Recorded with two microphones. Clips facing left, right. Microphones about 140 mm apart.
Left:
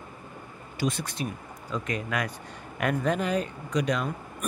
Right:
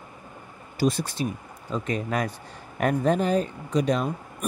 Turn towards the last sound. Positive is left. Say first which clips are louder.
# right 3 dB
turn(degrees=-30)  # may be behind; listen again after turning